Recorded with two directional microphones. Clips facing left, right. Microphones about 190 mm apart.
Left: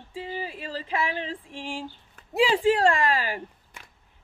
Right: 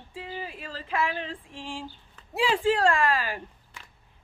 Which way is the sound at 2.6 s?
20° left (ahead or behind).